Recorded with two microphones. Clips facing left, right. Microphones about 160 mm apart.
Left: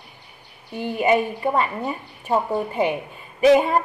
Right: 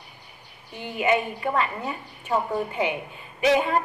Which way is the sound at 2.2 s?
40° left (ahead or behind).